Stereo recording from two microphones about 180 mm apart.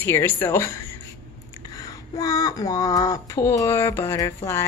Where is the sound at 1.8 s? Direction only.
20° left (ahead or behind).